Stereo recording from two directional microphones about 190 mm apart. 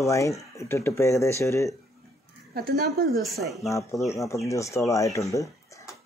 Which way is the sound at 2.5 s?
55° right (ahead or behind).